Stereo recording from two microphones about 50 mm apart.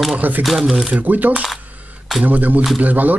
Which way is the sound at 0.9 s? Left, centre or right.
Right.